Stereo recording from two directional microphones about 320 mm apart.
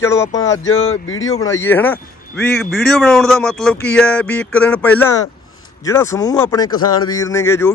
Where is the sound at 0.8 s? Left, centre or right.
Left.